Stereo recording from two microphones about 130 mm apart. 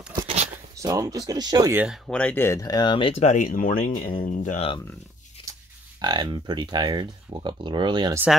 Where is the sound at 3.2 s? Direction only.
70° left (ahead or behind); by 4.6 s 85° left.